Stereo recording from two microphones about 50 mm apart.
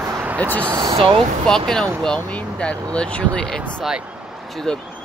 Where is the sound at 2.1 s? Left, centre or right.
Left.